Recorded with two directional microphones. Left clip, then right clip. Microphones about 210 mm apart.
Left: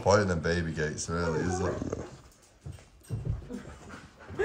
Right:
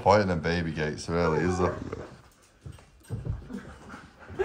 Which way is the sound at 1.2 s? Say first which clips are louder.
Right 6 dB; 20° right (ahead or behind).